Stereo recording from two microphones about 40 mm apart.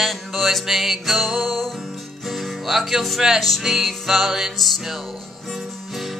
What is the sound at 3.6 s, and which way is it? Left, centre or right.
Music, centre.